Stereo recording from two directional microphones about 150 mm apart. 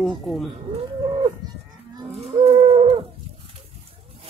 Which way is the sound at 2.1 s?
40° right (ahead or behind).